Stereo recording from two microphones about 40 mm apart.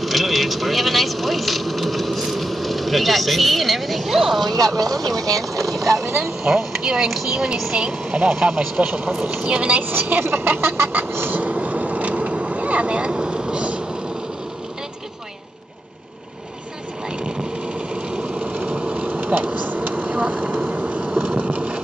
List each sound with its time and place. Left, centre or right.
0.0 s speech: centre
6.4 s speech: centre
8.7 s speech: right
9.8 s a woman's voice: right
11.1 s vehicle: right
11.3 s vehicle: right
17.2 s a sound: right
18.5 s vehicle: right
18.8 s a sound: right
19.0 s vehicle: right
20.0 s vehicle: right
20.5 s vehicle: right
21.4 s a sound: right